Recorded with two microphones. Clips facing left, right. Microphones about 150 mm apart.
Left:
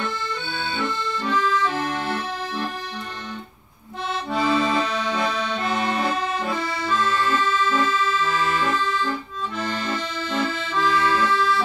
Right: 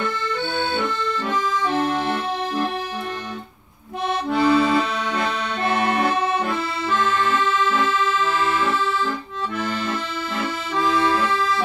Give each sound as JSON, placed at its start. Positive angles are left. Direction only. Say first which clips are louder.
{"t": 1.3, "sound": "accordion", "louder": "left 2 dB", "side_deg": -20}
{"t": 4.3, "sound": "accordion", "louder": "right 4 dB", "side_deg": -5}
{"t": 8.6, "sound": "accordion", "louder": "right 1 dB", "side_deg": -5}
{"t": 11.0, "sound": "accordion", "louder": "even", "side_deg": -20}